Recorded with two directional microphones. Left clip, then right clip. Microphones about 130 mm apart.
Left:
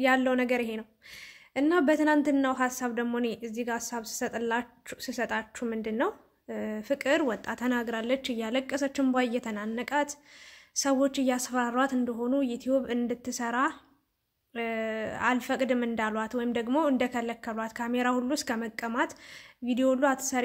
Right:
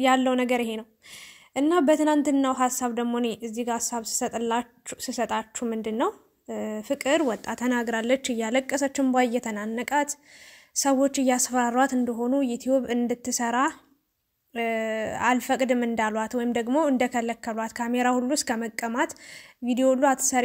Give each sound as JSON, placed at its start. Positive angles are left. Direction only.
{"t": 0.0, "sound": "a woman's voice", "side_deg": -40}